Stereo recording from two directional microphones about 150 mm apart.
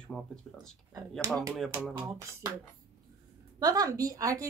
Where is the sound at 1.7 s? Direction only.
25° right (ahead or behind).